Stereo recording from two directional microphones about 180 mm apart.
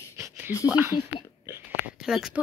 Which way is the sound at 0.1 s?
10° right (ahead or behind).